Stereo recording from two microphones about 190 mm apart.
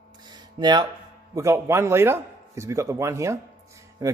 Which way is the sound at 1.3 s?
15° right (ahead or behind).